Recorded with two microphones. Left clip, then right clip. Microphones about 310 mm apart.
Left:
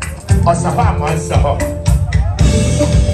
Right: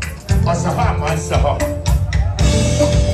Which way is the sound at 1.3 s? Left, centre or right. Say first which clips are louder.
Left 1 dB; centre.